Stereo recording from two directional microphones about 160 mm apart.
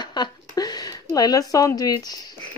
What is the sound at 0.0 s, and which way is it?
Speech, 25° left (ahead or behind).